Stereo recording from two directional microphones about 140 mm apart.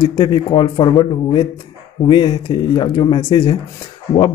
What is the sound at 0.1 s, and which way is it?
Speech, 30° left (ahead or behind).